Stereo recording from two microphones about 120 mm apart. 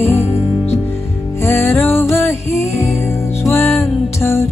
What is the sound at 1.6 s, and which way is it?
Music, 20° left (ahead or behind).